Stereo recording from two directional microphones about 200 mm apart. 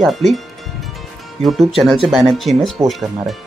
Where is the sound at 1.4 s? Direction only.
30° right (ahead or behind).